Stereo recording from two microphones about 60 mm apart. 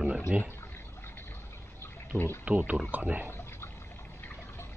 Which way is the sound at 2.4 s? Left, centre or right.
Right.